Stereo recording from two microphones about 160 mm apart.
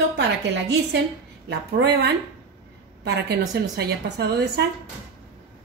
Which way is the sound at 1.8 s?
90° right.